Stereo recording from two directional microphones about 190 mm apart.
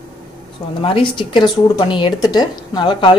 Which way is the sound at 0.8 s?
25° left (ahead or behind).